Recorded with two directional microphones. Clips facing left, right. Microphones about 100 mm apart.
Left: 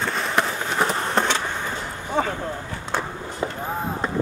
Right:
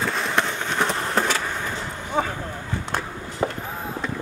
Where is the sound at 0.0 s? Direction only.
Centre (ahead or behind).